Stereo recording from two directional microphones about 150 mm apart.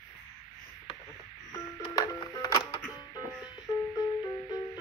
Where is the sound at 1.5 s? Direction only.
25° left (ahead or behind).